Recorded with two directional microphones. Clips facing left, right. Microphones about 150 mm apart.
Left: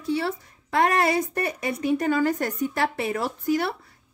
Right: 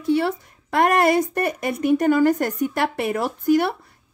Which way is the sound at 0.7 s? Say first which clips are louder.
Right 4 dB; 50° right (ahead or behind).